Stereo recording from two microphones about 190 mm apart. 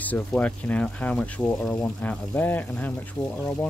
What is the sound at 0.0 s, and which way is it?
Speech, 10° left (ahead or behind).